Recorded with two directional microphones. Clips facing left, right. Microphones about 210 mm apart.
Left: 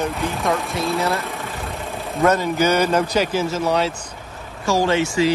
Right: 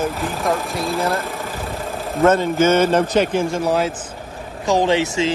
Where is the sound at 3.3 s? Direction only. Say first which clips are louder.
Right 1 dB; 5° left (ahead or behind).